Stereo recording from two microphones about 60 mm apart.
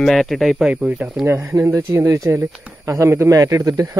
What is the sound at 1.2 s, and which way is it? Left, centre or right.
Speech, right.